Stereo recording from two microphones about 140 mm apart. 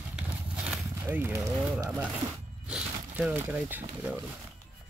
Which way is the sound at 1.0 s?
15° right (ahead or behind).